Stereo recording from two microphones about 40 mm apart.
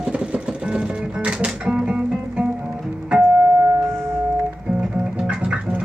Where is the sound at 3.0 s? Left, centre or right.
Right.